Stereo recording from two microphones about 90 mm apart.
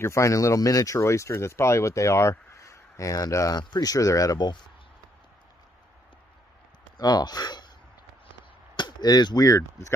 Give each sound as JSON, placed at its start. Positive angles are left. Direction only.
{"t": 0.0, "sound": "speech", "side_deg": 35}
{"t": 7.0, "sound": "speech", "side_deg": 45}
{"t": 8.7, "sound": "a sound", "side_deg": 50}
{"t": 9.5, "sound": "speech", "side_deg": 35}